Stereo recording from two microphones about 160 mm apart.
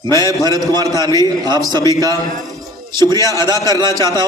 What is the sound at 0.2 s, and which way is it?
A man's voice, 25° right (ahead or behind).